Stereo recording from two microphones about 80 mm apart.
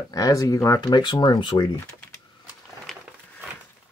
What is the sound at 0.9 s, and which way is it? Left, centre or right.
Speech, left.